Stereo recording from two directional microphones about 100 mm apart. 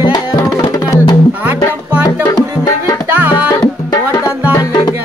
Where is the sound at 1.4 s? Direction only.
15° right (ahead or behind).